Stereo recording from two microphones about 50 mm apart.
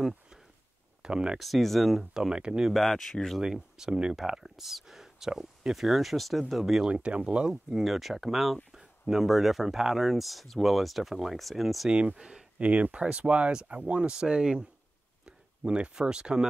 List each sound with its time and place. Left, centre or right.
1.0 s speech: centre
1.4 s speech: centre
2.1 s speech: centre
2.7 s speech: centre
3.3 s speech: centre
6.8 s speech: right
7.7 s speech: centre
11.9 s speech: right
12.2 s speech: centre
12.5 s speech: right